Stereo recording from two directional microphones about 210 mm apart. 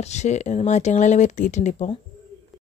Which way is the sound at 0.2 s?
35° left (ahead or behind).